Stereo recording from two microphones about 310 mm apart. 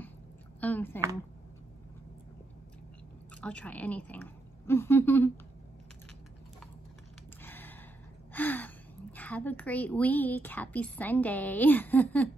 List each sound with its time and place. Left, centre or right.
0.6 s a woman's voice: centre
3.3 s speech: centre
7.4 s a sound: centre
8.3 s a woman's voice: centre